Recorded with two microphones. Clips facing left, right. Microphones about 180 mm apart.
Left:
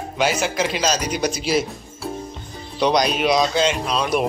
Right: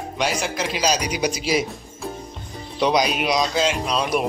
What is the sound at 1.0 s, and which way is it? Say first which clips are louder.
Speech: left 1 dB; 10° right (ahead or behind).